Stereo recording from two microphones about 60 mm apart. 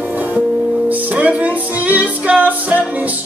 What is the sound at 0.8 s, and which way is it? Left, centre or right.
Music, right.